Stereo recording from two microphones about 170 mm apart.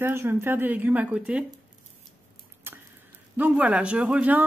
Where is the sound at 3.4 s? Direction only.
10° right (ahead or behind).